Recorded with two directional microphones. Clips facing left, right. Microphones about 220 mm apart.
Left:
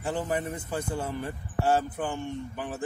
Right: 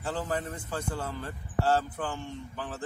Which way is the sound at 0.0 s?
15° left (ahead or behind).